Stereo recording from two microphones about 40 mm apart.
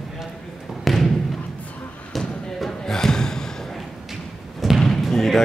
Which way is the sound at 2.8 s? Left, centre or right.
Centre.